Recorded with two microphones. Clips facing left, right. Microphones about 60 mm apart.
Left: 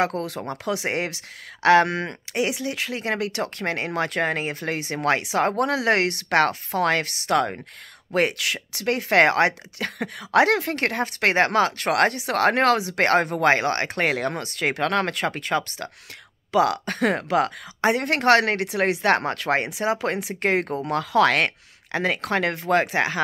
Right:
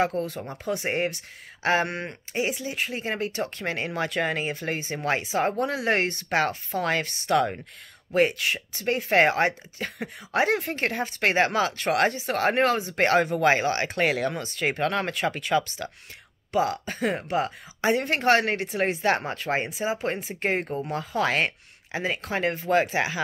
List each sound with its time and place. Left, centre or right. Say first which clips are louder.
0.0 s speech: left 1 dB; left
16.5 s speech: left 5 dB; left